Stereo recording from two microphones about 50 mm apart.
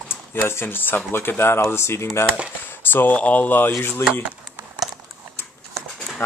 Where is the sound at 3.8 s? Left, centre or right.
Left.